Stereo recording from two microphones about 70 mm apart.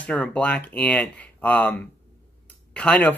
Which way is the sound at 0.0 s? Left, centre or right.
Centre.